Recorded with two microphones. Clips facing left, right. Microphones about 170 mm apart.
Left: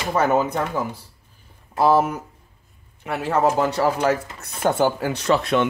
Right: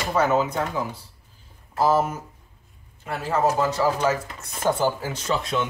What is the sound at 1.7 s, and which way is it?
Speech, 65° left (ahead or behind).